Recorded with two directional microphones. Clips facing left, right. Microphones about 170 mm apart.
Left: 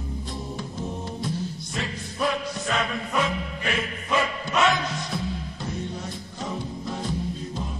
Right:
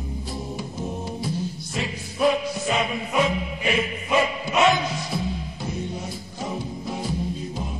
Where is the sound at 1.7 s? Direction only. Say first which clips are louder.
Right 2 dB; 5° right (ahead or behind).